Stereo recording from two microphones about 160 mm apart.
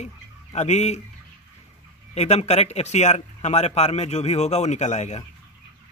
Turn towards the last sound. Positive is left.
turn(degrees=45)  # may be behind; listen again after turning